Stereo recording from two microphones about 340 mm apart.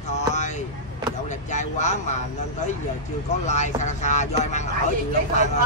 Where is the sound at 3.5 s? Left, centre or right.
Centre.